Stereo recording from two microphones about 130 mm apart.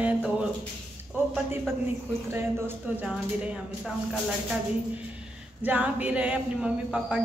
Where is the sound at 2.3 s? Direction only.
15° right (ahead or behind).